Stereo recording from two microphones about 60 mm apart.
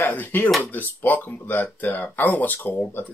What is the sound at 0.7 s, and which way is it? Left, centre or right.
Speech, left.